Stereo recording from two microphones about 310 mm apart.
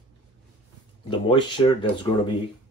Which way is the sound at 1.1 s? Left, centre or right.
Centre.